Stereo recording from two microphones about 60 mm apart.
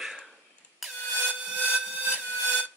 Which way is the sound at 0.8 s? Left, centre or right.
Centre.